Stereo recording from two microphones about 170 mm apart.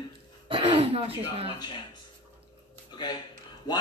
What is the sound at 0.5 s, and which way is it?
Throat clearing, 30° right (ahead or behind).